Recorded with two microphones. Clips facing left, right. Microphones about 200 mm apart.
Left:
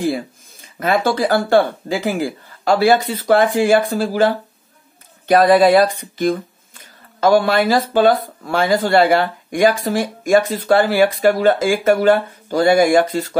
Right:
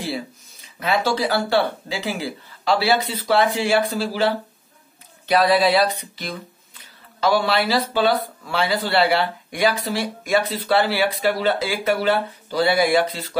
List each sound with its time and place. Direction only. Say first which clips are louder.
0.7 s speech: left 4 dB; 50° left (ahead or behind)
5.3 s speech: left 6 dB; 50° left (ahead or behind)